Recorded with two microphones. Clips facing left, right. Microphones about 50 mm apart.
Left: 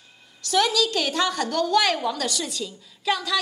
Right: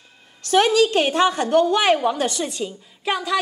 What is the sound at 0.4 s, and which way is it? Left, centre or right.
A woman's voice, right.